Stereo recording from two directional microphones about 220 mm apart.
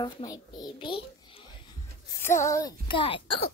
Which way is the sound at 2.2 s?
10° left (ahead or behind).